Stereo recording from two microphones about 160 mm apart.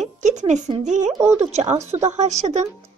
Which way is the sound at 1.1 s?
20° right (ahead or behind).